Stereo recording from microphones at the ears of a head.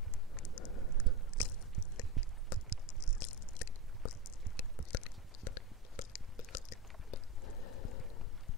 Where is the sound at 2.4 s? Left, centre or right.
Left.